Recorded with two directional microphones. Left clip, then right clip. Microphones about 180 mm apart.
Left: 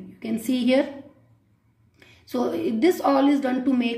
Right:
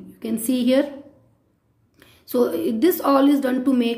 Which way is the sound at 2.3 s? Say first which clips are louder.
Right 5 dB; 30° right (ahead or behind).